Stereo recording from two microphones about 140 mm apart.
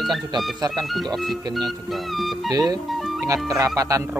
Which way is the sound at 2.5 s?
25° right (ahead or behind).